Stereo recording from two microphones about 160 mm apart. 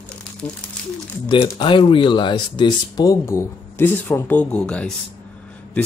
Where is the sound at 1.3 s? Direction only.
30° left (ahead or behind).